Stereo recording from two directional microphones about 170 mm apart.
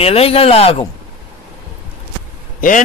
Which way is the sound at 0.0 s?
35° left (ahead or behind).